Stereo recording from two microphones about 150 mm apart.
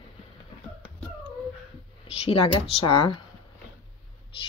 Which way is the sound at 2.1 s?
40° left (ahead or behind).